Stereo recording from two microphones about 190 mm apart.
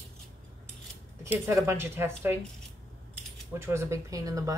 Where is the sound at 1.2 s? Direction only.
15° right (ahead or behind).